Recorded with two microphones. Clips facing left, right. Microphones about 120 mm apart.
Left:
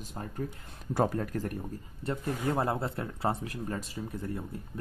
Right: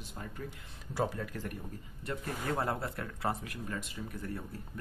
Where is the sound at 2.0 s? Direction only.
25° left (ahead or behind).